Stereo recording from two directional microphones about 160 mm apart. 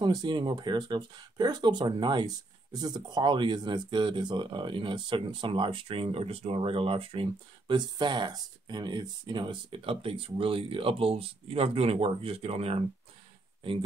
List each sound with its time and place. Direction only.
0.0 s speech: 30° right (ahead or behind)